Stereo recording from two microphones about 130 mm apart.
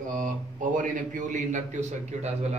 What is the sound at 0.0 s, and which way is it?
A man's voice, 80° right.